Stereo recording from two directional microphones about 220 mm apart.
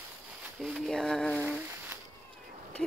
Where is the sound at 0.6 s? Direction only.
Centre (ahead or behind).